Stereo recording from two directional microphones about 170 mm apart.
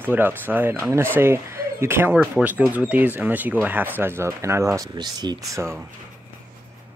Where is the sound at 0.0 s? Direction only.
10° right (ahead or behind).